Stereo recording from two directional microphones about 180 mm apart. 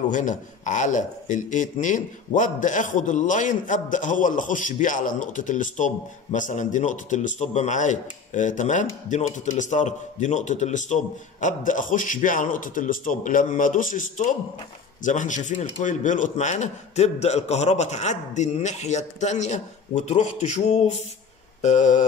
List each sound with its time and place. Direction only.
0.1 s a man's voice: 45° left (ahead or behind)
21.5 s mantra: 40° left (ahead or behind)